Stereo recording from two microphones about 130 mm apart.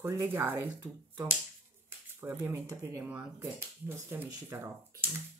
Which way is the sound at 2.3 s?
25° right (ahead or behind).